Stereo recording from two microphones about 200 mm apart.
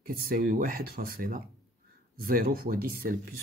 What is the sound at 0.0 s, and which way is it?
Speech, 45° right (ahead or behind).